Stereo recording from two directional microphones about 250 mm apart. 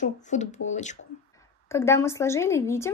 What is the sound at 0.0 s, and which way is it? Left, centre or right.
Speech, left.